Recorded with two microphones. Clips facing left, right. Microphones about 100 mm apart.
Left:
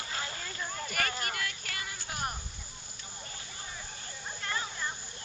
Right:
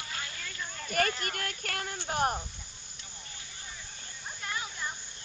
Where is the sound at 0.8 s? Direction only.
45° right (ahead or behind).